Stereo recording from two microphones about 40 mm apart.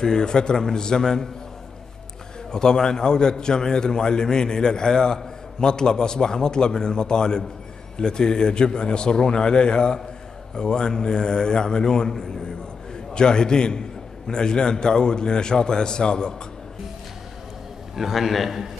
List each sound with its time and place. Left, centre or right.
0.0 s a man's voice: centre
2.5 s a man's voice: centre
17.9 s a man's voice: centre